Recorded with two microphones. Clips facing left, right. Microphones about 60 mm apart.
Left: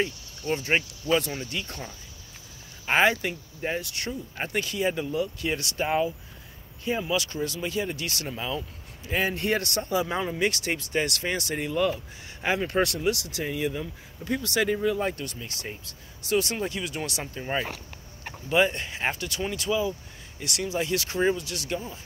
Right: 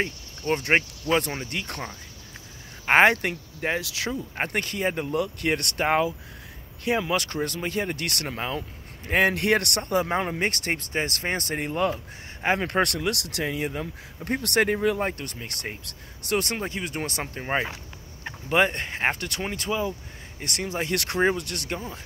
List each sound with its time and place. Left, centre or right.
0.0 s speech: right
4.4 s speech: right
10.0 s speech: right
10.3 s speech: right
10.9 s speech: right
15.0 s speech: right